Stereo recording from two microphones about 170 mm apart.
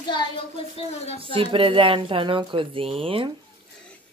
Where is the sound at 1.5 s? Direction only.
30° right (ahead or behind).